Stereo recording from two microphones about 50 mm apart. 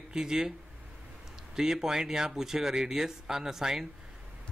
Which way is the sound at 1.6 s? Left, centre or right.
Centre.